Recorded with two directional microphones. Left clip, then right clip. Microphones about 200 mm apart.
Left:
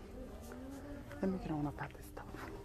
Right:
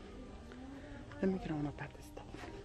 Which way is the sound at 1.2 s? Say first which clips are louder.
Right 2 dB; 10° right (ahead or behind).